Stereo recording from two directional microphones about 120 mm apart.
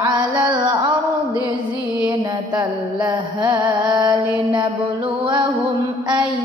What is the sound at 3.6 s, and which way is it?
Music, 25° right (ahead or behind).